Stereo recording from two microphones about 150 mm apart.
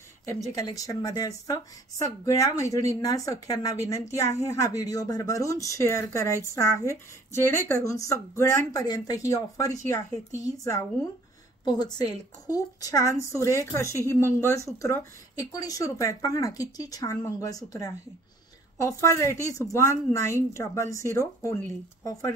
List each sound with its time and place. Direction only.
0.6 s speech: 25° left (ahead or behind)